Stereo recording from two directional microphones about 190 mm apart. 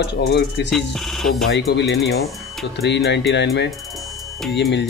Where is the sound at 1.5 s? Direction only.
65° left (ahead or behind).